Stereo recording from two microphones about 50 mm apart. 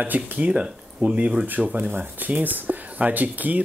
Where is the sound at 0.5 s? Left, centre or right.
Centre.